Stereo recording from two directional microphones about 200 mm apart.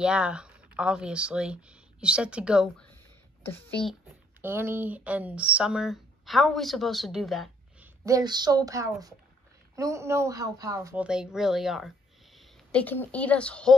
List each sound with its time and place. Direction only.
0.0 s speech: 5° right (ahead or behind)
4.1 s speech: 10° right (ahead or behind)
8.0 s a woman's voice: 20° right (ahead or behind)
11.1 s speech: 5° right (ahead or behind)